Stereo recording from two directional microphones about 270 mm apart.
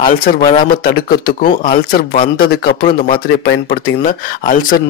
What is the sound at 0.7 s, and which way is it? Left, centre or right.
Speech, left.